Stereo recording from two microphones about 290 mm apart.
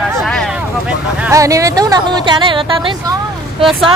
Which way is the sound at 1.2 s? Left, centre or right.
Centre.